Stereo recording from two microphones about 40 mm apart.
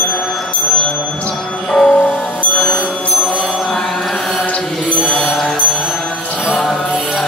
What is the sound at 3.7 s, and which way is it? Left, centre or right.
Mantra, left.